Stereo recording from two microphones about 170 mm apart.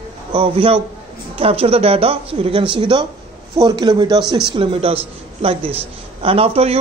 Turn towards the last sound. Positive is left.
turn(degrees=-35)  # may be behind; listen again after turning